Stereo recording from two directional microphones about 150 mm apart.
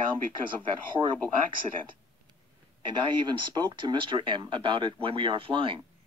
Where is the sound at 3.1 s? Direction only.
30° right (ahead or behind).